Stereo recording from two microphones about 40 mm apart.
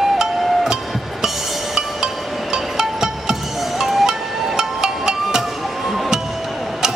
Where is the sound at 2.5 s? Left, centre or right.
Centre.